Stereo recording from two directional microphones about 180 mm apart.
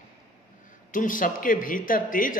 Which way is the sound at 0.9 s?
50° left (ahead or behind).